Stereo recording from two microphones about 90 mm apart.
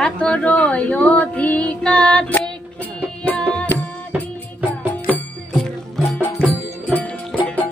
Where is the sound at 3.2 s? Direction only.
10° left (ahead or behind).